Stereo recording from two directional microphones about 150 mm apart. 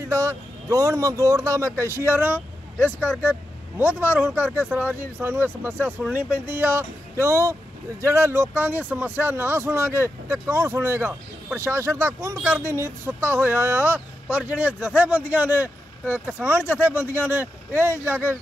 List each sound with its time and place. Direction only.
0.1 s speech: 20° right (ahead or behind)